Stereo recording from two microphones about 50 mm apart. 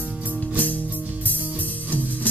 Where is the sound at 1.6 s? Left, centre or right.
Left.